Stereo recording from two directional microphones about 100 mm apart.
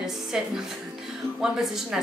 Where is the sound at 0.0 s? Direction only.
5° right (ahead or behind).